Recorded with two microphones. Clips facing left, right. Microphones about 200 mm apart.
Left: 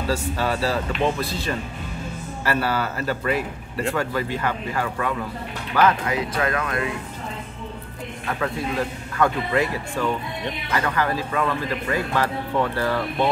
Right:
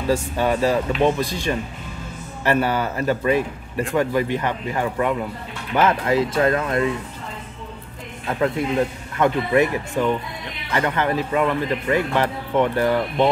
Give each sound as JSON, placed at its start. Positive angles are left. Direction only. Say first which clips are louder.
{"t": 0.4, "sound": "speech", "louder": "right 6 dB", "side_deg": -15}
{"t": 8.3, "sound": "speech", "louder": "right 5 dB", "side_deg": -20}